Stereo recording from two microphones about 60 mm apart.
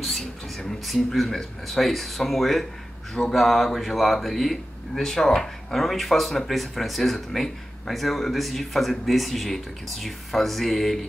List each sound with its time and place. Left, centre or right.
0.0 s speech: centre